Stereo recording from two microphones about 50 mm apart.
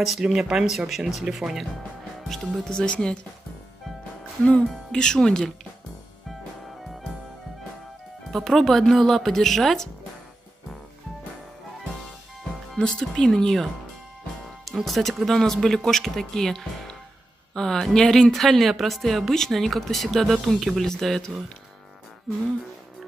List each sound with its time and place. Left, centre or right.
0.2 s speech: centre
2.2 s speech: centre
2.7 s speech: centre
4.5 s speech: left
8.3 s speech: centre
12.7 s speech: centre
14.9 s speech: centre